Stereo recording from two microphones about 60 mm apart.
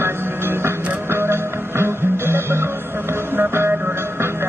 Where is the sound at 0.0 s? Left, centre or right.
Right.